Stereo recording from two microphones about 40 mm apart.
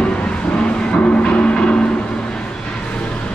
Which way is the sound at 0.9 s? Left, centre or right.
Left.